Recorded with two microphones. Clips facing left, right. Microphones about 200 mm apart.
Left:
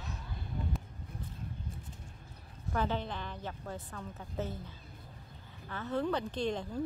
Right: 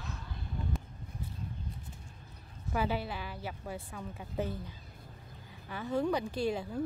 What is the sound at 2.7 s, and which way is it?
Speech, 10° right (ahead or behind).